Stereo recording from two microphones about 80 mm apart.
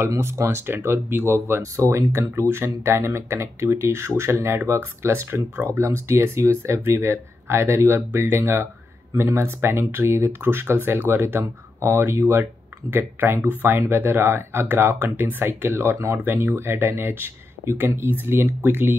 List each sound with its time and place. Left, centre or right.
0.0 s speech: right